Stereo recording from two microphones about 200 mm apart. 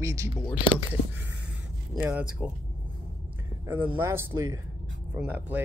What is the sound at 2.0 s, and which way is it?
Speech, 5° right (ahead or behind).